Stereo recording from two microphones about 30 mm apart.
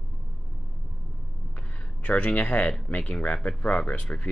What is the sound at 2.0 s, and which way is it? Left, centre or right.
Speech, left.